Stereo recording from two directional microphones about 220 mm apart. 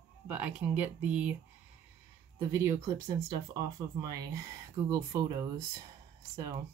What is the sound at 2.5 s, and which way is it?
Speech, 10° right (ahead or behind).